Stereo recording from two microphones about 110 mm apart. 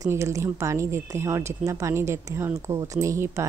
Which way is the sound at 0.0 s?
30° right (ahead or behind).